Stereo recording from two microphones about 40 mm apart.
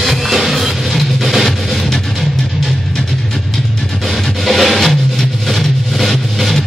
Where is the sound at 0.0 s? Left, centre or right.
Centre.